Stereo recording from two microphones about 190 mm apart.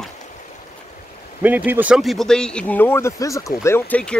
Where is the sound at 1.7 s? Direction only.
5° right (ahead or behind).